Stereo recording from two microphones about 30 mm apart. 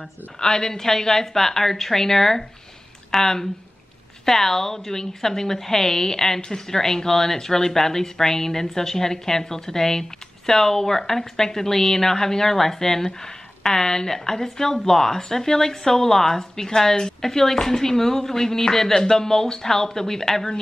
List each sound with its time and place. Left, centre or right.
0.4 s a woman's voice: left